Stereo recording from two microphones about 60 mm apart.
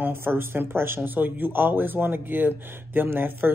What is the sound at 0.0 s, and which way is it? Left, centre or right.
Speech, right.